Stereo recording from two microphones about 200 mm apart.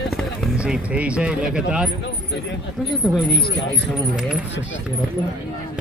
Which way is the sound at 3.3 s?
60° left (ahead or behind).